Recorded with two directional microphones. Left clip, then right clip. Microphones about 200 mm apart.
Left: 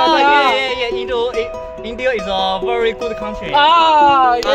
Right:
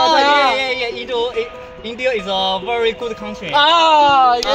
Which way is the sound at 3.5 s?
25° left (ahead or behind).